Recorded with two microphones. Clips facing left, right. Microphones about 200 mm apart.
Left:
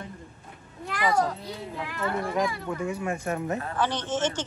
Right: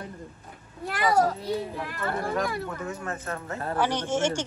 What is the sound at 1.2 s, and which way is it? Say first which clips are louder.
Speech: right 5 dB; centre (ahead or behind).